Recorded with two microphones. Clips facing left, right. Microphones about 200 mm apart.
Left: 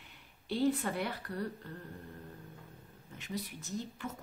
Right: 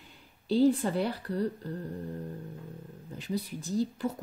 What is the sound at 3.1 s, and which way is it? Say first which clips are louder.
Speech: right 7 dB; 35° right (ahead or behind).